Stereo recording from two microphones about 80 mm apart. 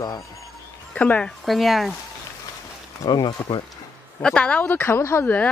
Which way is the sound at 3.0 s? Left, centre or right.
Left.